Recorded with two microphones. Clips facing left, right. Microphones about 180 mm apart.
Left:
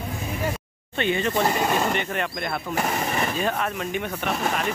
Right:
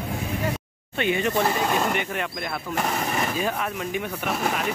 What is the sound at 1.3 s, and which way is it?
Speech, 15° left (ahead or behind).